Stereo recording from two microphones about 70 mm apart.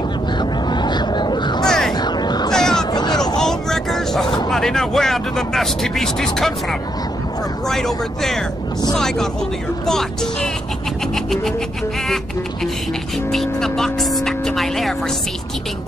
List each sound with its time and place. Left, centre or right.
0.4 s a sound: left
1.7 s a sound: centre
2.0 s a sound: left
2.5 s vehicle: centre
2.8 s vehicle: left
3.3 s vehicle: centre
4.5 s speech: centre
11.1 s music: centre
13.3 s speech: centre